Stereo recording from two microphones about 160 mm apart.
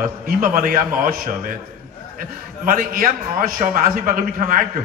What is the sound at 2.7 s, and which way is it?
A man's voice, 60° right (ahead or behind).